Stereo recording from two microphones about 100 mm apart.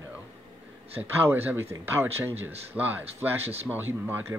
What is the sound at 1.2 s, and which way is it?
Speech, 20° right (ahead or behind).